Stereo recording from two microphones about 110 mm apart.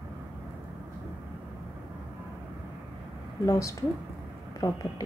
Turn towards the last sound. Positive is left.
turn(degrees=35)  # may be behind; listen again after turning